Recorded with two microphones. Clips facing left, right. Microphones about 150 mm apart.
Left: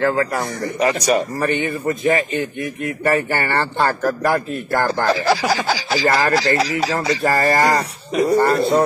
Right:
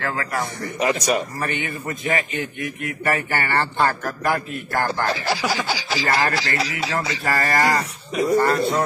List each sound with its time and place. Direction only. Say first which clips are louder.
0.0 s a man's voice: left 7 dB; 35° left (ahead or behind)